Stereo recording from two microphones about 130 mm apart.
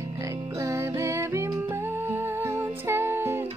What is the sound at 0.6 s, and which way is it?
Music, 25° right (ahead or behind).